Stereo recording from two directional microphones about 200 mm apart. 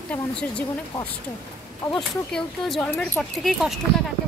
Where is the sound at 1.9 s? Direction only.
Centre (ahead or behind).